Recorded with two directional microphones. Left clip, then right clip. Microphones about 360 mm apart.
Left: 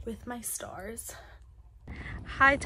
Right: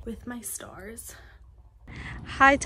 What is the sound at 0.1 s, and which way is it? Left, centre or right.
Speech, centre.